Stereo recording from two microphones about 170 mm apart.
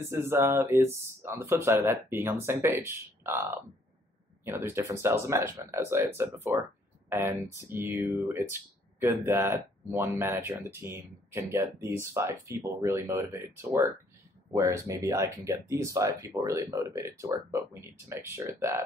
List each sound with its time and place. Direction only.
0.0 s speech: 15° right (ahead or behind)
4.5 s speech: 15° right (ahead or behind)